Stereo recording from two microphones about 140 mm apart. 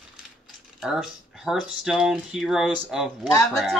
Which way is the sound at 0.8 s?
5° right (ahead or behind).